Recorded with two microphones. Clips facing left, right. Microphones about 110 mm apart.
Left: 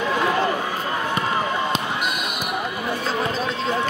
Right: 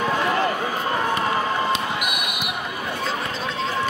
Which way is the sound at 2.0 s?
15° right (ahead or behind).